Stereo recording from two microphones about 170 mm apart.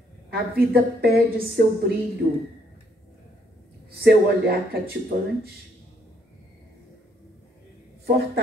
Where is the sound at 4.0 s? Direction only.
65° right (ahead or behind).